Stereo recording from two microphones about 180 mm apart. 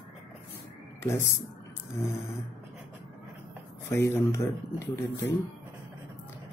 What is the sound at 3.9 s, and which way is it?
Speech, 15° left (ahead or behind).